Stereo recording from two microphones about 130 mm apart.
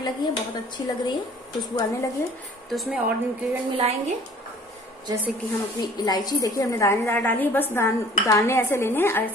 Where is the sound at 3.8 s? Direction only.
55° right (ahead or behind).